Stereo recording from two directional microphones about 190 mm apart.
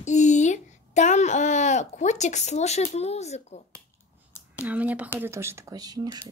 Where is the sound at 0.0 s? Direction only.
40° left (ahead or behind).